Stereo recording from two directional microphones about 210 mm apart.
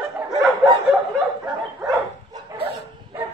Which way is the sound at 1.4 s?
5° right (ahead or behind).